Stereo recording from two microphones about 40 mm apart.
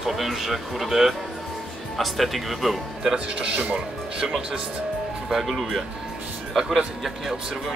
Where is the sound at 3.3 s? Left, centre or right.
Right.